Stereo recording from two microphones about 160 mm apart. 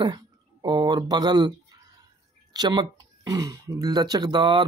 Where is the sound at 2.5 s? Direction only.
25° right (ahead or behind).